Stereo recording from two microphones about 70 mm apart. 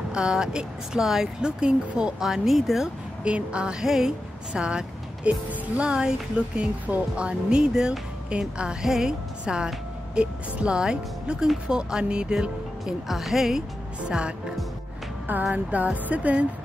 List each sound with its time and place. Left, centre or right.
0.1 s speech: centre
3.3 s speech: centre
14.0 s speech: centre
15.5 s speech: right